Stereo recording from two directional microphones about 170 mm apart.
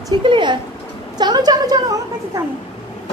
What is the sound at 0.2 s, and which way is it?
A woman's voice, 30° right (ahead or behind).